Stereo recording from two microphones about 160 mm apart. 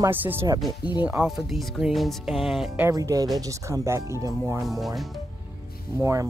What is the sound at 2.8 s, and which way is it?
Speech, 20° right (ahead or behind).